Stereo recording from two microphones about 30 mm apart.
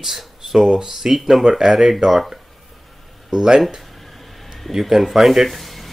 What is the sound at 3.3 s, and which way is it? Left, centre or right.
Speech, right.